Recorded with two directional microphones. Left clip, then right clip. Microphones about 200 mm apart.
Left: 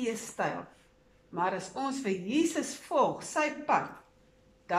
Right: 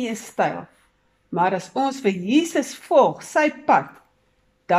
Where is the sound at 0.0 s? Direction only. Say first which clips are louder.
Right 9 dB; 50° right (ahead or behind).